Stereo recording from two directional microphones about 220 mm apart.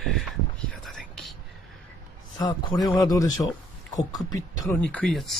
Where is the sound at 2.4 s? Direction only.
20° left (ahead or behind).